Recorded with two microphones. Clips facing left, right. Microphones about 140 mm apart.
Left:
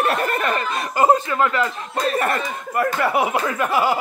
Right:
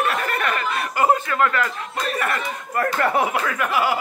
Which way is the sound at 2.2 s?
35° left (ahead or behind).